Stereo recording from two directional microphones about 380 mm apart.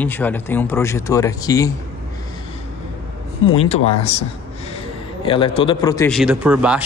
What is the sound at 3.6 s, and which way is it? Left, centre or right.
A man's voice, centre.